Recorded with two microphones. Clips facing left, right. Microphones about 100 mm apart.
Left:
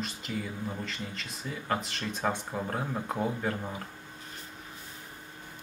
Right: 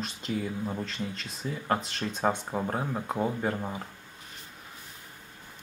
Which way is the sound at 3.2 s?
20° right (ahead or behind).